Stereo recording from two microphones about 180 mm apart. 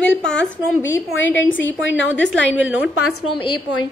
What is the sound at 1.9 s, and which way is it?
Speech, 90° left.